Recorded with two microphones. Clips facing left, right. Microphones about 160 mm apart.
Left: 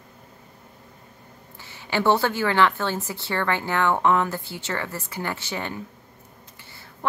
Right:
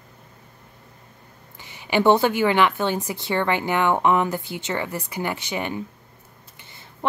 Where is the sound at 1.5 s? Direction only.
15° right (ahead or behind).